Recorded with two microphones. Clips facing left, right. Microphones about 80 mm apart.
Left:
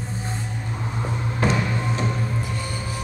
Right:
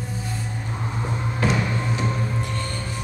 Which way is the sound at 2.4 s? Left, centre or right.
Centre.